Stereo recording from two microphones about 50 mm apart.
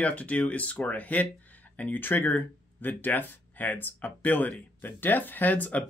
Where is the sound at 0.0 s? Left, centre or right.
Left.